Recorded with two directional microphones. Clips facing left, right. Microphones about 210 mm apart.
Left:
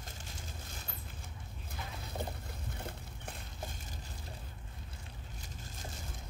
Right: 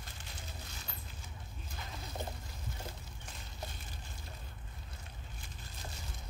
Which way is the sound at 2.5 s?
60° left (ahead or behind).